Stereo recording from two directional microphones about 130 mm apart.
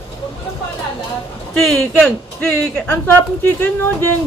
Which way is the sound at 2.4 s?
15° left (ahead or behind).